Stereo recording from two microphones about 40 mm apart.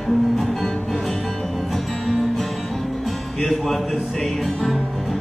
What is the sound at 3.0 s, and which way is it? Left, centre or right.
Speech, centre.